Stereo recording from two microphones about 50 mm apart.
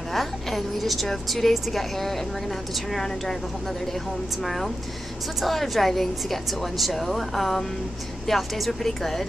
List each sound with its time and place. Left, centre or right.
0.1 s a woman's voice: centre